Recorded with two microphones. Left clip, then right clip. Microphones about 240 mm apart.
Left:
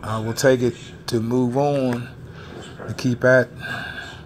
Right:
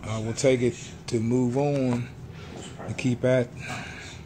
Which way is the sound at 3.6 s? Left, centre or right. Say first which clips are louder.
Left 7 dB; left.